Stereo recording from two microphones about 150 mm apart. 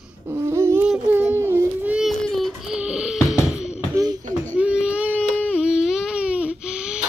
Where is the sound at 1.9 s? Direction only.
Centre (ahead or behind).